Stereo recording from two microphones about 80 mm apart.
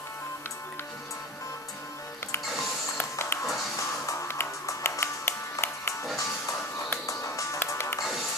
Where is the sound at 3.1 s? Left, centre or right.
Left.